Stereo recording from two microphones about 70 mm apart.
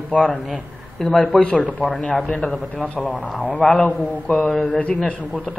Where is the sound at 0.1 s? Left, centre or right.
Centre.